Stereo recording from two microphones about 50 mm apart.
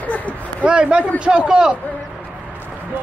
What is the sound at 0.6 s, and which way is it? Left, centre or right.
A man's voice, right.